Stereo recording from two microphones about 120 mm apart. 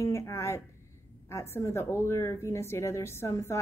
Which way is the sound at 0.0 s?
25° left (ahead or behind).